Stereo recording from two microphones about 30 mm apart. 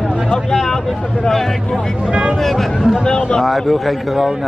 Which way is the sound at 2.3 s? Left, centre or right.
Centre.